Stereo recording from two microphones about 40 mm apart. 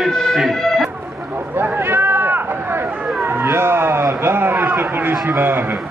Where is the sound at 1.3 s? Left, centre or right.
Right.